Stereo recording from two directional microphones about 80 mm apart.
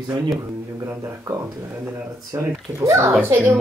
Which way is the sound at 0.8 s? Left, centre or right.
Right.